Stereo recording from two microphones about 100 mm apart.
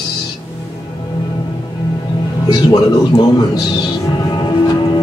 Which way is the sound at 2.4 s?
40° left (ahead or behind).